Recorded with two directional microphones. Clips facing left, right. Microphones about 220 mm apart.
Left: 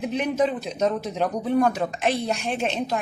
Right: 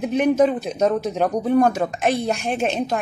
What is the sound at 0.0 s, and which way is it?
A man's voice, 45° right (ahead or behind).